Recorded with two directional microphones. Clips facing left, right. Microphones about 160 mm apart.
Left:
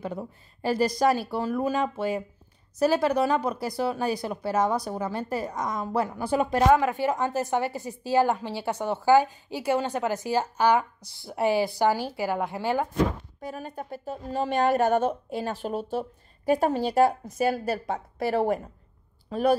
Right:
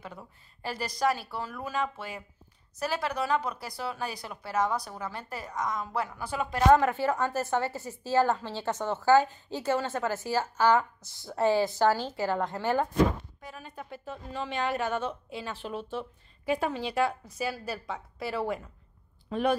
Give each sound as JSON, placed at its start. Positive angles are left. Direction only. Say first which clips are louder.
{"t": 0.0, "sound": "speech", "louder": "left 11 dB", "side_deg": 35}
{"t": 3.5, "sound": "speech", "louder": "left 8 dB", "side_deg": 25}
{"t": 6.7, "sound": "a woman's voice", "louder": "left 1 dB", "side_deg": 15}
{"t": 13.4, "sound": "a woman's voice", "louder": "left 8 dB", "side_deg": 40}